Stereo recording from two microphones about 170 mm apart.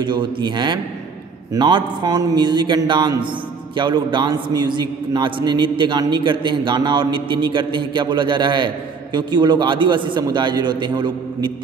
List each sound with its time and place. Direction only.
0.0 s a man's voice: 25° right (ahead or behind)